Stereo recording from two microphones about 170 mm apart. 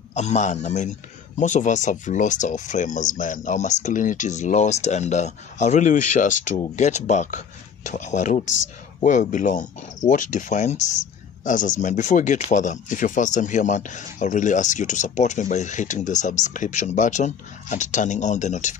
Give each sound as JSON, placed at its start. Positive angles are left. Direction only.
{"t": 0.1, "sound": "speech", "side_deg": 40}